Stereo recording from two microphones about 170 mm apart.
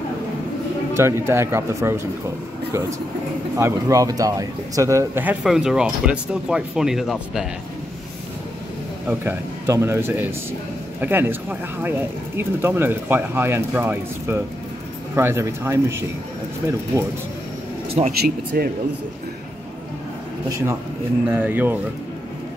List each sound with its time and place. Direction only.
0.9 s speech: 15° right (ahead or behind)
3.5 s speech: 15° right (ahead or behind)
9.0 s speech: 10° right (ahead or behind)
17.9 s speech: 45° right (ahead or behind)
20.4 s a man's voice: 20° right (ahead or behind)